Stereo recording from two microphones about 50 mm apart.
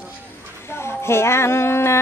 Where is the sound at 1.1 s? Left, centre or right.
Left.